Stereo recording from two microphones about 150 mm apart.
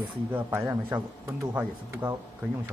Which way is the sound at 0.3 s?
15° right (ahead or behind).